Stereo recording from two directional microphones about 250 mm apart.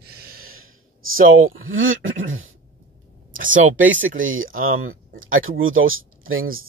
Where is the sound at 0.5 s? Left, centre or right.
Right.